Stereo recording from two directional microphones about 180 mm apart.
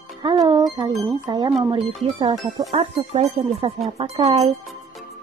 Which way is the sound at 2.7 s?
35° right (ahead or behind).